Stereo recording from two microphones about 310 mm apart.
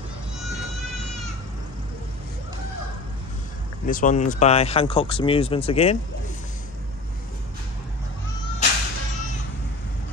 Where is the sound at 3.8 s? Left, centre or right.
Left.